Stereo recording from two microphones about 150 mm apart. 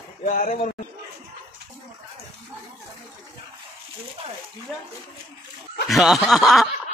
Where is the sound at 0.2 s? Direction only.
60° left (ahead or behind).